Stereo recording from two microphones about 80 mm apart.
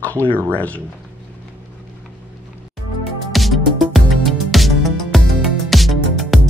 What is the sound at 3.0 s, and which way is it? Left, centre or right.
Music, centre.